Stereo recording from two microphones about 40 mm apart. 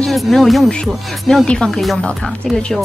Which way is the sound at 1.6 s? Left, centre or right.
Centre.